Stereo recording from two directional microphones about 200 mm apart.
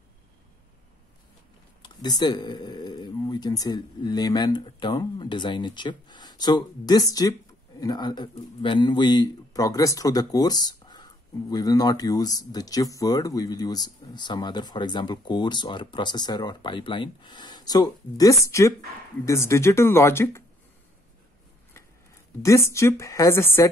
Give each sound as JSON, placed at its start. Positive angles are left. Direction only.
{"t": 1.8, "sound": "a woman's voice", "side_deg": 20}
{"t": 22.4, "sound": "a woman's voice", "side_deg": 15}